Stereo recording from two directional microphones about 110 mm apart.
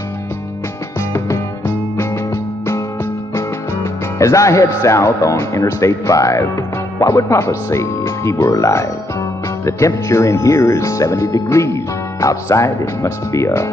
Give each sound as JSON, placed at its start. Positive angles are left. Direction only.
{"t": 4.2, "sound": "speech", "side_deg": 30}